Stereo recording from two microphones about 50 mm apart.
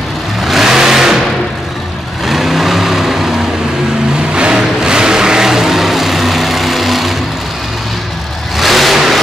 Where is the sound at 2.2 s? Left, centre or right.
Centre.